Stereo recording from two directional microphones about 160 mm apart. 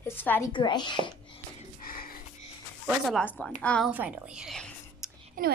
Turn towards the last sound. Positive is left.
turn(degrees=-60)  # may be behind; listen again after turning